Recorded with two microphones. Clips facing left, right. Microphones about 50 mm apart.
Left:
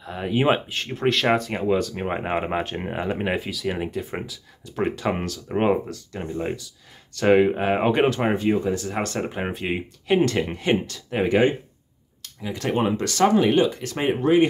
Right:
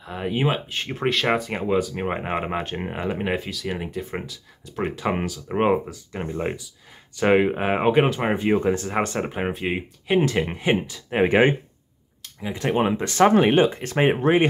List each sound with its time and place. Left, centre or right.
0.0 s speech: centre
2.1 s speech: centre
8.5 s speech: right
8.9 s speech: centre
9.2 s speech: centre
11.1 s speech: right
12.2 s speech: centre
13.3 s speech: right